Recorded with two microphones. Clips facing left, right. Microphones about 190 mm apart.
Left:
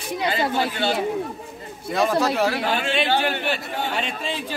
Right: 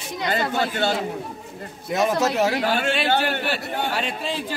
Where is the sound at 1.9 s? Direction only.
20° right (ahead or behind).